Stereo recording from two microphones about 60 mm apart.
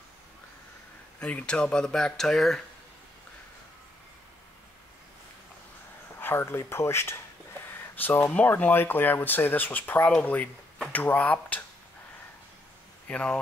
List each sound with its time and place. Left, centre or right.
1.2 s speech: centre
6.2 s speech: left
7.9 s speech: left
13.1 s speech: centre